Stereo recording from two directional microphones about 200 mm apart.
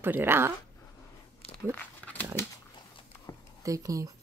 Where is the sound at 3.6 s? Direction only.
15° right (ahead or behind).